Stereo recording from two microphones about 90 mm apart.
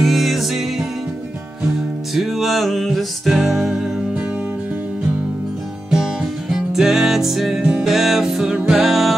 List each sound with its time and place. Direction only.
0.0 s music: centre (ahead or behind)
2.1 s music: centre (ahead or behind)
6.5 s music: 5° right (ahead or behind)